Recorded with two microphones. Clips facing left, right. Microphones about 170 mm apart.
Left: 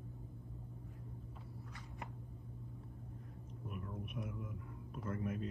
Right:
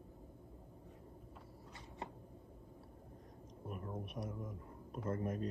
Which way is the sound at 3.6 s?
40° right (ahead or behind).